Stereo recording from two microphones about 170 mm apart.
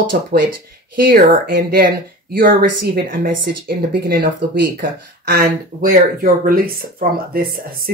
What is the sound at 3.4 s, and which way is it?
Speech, 70° right (ahead or behind).